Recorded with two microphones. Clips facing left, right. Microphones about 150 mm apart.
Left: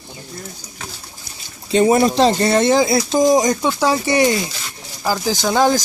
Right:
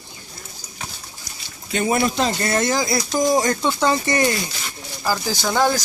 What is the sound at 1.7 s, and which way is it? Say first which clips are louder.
Speech: left 7 dB; 30° left (ahead or behind).